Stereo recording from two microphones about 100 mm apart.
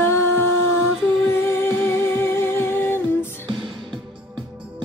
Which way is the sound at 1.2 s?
25° left (ahead or behind).